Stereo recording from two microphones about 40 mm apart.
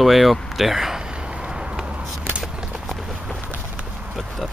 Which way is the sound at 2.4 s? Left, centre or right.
Centre.